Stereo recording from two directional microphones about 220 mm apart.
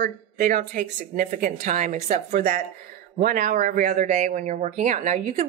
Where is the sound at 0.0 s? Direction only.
35° right (ahead or behind).